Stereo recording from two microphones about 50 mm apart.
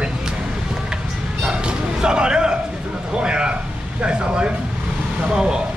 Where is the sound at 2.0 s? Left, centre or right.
Centre.